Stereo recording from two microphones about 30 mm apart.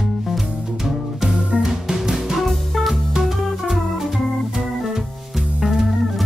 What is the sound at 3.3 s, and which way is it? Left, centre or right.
Organ, centre.